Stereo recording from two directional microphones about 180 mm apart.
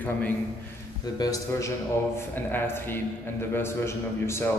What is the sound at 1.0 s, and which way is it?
A man's voice, 20° left (ahead or behind).